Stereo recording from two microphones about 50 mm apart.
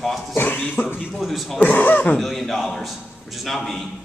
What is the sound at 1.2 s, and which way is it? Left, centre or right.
Speech, centre.